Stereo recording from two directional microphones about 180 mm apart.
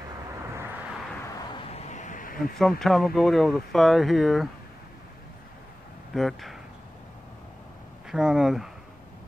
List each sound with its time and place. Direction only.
1.5 s a sound: 30° left (ahead or behind); by 2.5 s 50° left (ahead or behind)
2.6 s speech: centre (ahead or behind)
6.1 s speech: centre (ahead or behind)
8.1 s speech: 5° right (ahead or behind)